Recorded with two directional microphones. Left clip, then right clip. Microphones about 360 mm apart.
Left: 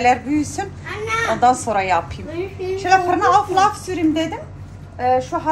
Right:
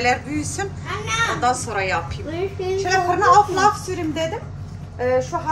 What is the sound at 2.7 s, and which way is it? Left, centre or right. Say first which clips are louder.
Speech: left 4 dB; left.